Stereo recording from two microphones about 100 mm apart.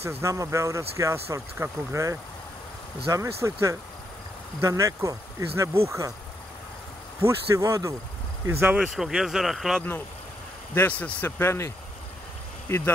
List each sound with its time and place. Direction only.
0.2 s speech: 30° right (ahead or behind)
4.6 s speech: 30° right (ahead or behind)
7.2 s speech: 30° right (ahead or behind)
8.7 s speech: 5° right (ahead or behind)
10.7 s speech: 15° left (ahead or behind)